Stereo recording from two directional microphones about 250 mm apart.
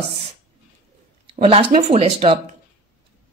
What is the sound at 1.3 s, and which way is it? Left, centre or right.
A woman's voice, right.